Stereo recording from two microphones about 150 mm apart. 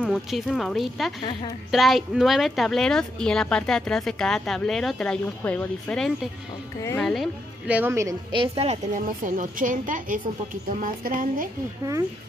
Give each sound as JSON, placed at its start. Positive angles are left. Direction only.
{"t": 0.0, "sound": "speech", "side_deg": 0}
{"t": 7.6, "sound": "speech", "side_deg": -10}
{"t": 8.3, "sound": "speech", "side_deg": -40}
{"t": 8.9, "sound": "a woman's voice", "side_deg": -60}